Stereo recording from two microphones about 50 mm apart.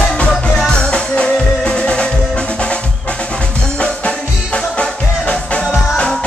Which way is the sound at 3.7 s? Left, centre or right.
Left.